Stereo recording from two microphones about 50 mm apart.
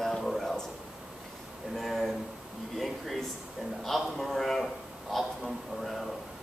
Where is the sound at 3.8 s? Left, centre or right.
Centre.